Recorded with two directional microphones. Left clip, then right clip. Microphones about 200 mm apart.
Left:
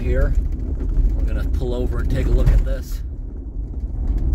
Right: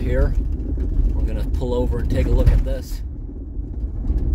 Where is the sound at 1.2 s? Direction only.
20° right (ahead or behind).